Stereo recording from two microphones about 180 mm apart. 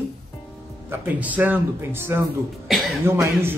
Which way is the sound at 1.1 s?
10° right (ahead or behind).